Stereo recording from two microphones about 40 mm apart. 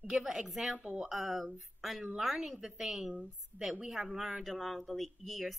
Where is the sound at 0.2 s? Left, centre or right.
Centre.